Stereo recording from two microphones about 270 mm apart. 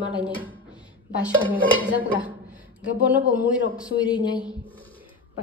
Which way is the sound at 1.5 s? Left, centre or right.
Centre.